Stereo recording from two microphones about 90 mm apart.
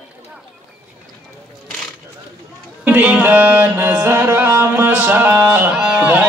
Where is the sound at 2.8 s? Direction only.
20° right (ahead or behind).